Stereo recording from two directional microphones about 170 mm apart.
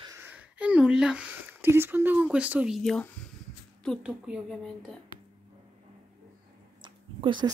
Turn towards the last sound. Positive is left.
turn(degrees=-25)  # may be behind; listen again after turning